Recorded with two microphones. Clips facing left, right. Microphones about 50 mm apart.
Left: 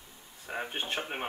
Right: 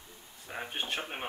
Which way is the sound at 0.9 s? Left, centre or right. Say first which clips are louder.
Left 2 dB; centre.